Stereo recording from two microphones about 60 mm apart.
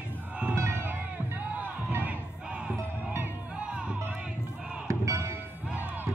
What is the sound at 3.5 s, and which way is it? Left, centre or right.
Music, centre.